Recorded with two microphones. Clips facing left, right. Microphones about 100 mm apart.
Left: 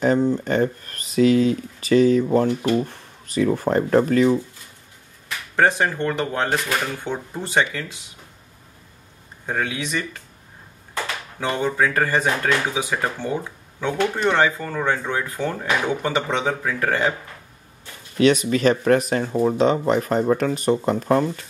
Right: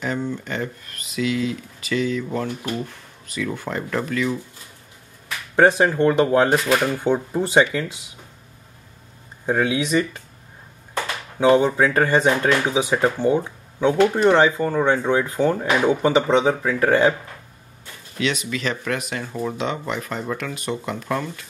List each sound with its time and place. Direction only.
0.0 s speech: 35° left (ahead or behind)
5.6 s speech: 15° right (ahead or behind)
9.5 s speech: 20° right (ahead or behind)
11.3 s speech: 20° right (ahead or behind)
18.2 s speech: 45° left (ahead or behind)